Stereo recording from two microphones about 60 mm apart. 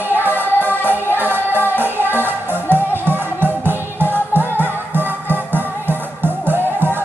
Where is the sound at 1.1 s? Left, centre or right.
Right.